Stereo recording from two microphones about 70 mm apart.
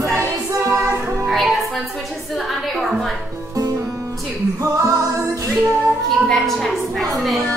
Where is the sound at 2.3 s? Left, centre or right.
Centre.